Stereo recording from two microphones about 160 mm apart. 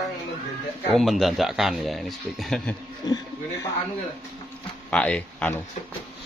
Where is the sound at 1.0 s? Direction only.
Centre (ahead or behind).